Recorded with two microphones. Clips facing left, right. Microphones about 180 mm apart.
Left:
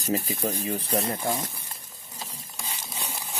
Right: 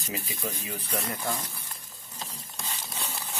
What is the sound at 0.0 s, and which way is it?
Speech, 40° left (ahead or behind).